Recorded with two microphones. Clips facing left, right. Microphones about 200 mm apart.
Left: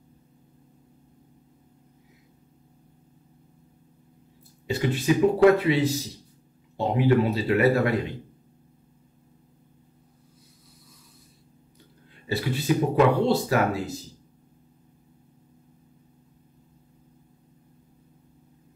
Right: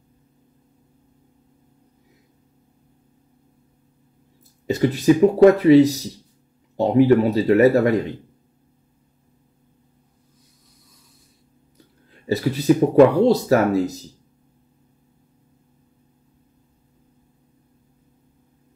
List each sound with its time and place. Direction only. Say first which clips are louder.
4.6 s speech: right 7 dB; 40° right (ahead or behind)
12.3 s speech: right 7 dB; 40° right (ahead or behind)